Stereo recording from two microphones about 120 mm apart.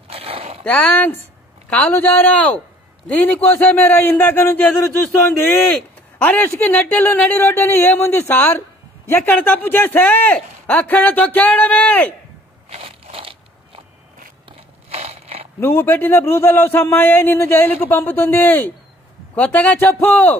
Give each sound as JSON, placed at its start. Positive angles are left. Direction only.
{"t": 0.1, "sound": "a sound", "side_deg": -55}
{"t": 0.7, "sound": "a man's voice", "side_deg": 15}
{"t": 6.2, "sound": "a man's voice", "side_deg": 15}
{"t": 12.6, "sound": "crackle", "side_deg": -55}
{"t": 14.9, "sound": "crushing", "side_deg": -60}
{"t": 15.6, "sound": "a man's voice", "side_deg": 15}